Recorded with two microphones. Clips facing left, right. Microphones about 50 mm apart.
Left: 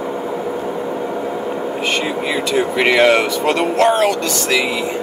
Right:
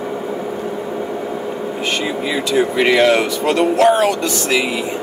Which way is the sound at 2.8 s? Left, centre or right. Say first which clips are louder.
Left 1 dB; centre.